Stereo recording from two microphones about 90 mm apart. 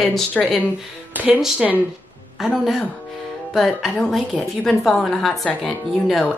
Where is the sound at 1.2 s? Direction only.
20° right (ahead or behind).